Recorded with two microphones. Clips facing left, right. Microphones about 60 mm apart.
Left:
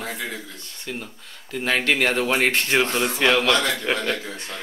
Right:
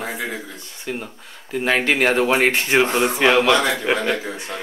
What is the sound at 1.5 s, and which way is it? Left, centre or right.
A man's voice, centre.